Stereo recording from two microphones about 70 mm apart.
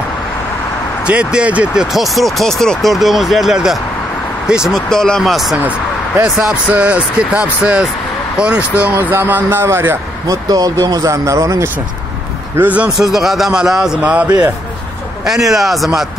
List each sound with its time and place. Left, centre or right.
1.0 s speech: centre
2.1 s speech: centre
4.7 s speech: centre
5.7 s a sound: centre
6.7 s speech: centre
8.9 s speech: right
10.2 s speech: right
12.5 s speech: right
12.9 s speech: centre
14.0 s speech: centre
15.2 s speech: centre